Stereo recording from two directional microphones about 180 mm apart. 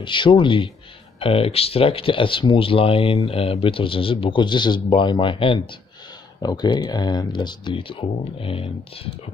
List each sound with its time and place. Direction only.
0.0 s speech: 25° left (ahead or behind)